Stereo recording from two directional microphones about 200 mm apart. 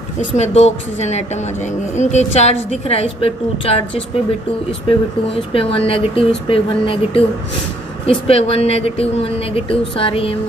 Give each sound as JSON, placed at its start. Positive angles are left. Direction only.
{"t": 0.4, "sound": "a woman's voice", "side_deg": 35}